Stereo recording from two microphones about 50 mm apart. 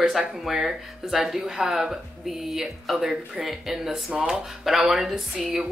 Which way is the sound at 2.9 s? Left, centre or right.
Centre.